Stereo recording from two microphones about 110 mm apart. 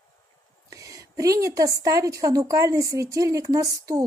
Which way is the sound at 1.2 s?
30° right (ahead or behind).